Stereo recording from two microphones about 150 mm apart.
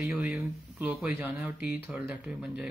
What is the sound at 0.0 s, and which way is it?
Speech, 5° right (ahead or behind).